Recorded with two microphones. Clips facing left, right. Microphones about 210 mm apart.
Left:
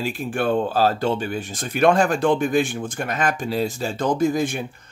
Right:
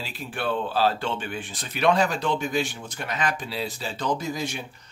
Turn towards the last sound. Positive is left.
turn(degrees=50)  # may be behind; listen again after turning